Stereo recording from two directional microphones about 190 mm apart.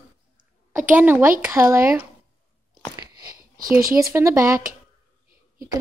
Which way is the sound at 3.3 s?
50° right (ahead or behind).